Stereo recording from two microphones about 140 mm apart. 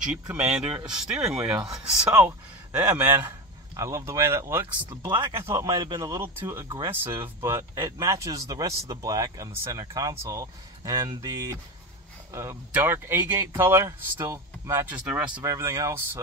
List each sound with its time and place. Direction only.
0.0 s speech: 5° right (ahead or behind)
1.6 s speech: 25° right (ahead or behind)
3.2 s speech: 25° right (ahead or behind)
5.1 s speech: 35° right (ahead or behind)
5.4 s speech: 20° right (ahead or behind)
15.4 s speech: 20° right (ahead or behind)